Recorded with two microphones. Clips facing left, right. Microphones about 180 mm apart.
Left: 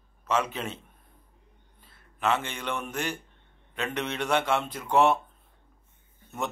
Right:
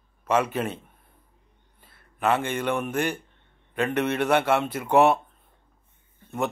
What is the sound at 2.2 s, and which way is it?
Speech, 55° right (ahead or behind).